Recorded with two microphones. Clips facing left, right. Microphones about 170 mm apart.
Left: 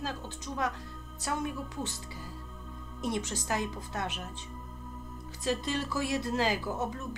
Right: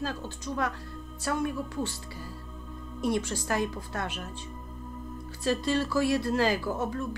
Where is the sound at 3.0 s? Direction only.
20° left (ahead or behind).